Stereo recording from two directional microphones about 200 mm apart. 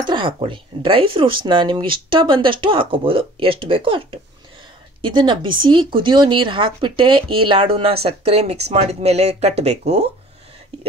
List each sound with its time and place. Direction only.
0.0 s speech: 25° right (ahead or behind)